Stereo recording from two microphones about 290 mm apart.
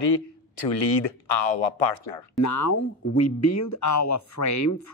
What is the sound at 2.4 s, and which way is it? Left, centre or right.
Speech, left.